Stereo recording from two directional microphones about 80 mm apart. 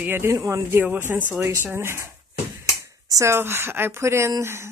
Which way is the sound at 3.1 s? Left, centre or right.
Right.